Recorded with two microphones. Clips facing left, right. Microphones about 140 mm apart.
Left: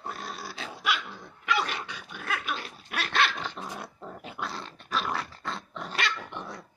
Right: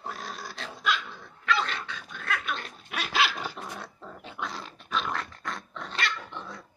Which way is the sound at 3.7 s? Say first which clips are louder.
Left 1 dB; 15° left (ahead or behind).